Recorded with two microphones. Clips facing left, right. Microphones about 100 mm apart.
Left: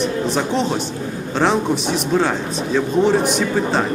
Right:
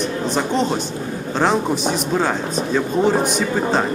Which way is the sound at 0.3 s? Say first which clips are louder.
Even; centre (ahead or behind).